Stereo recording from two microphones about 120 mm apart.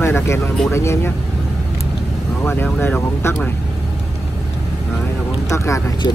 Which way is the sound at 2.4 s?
20° left (ahead or behind).